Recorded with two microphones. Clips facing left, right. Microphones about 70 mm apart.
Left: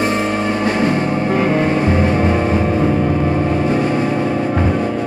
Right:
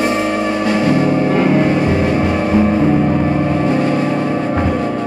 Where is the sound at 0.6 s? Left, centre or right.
Left.